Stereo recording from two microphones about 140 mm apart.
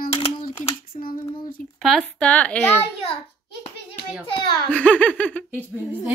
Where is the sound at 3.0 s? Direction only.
40° left (ahead or behind).